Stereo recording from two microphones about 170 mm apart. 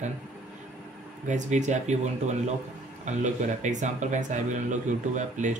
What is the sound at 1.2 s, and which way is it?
Speech, 45° right (ahead or behind).